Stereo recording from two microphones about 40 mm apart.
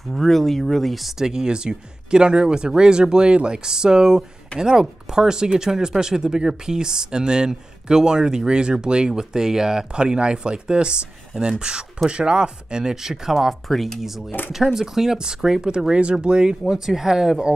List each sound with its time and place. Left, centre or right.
0.1 s speech: centre
1.1 s speech: centre